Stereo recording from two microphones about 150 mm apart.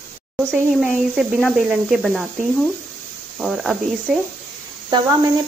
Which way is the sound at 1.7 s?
Centre (ahead or behind).